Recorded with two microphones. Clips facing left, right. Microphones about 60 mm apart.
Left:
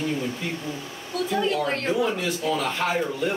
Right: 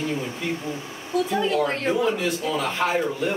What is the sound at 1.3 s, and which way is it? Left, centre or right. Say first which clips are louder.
A man's voice: left 1 dB; centre.